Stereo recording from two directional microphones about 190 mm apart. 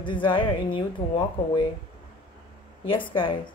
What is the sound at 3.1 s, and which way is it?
Speech, 25° left (ahead or behind).